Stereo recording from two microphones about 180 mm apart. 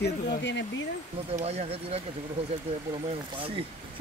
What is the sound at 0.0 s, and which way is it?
Speech, 75° left (ahead or behind).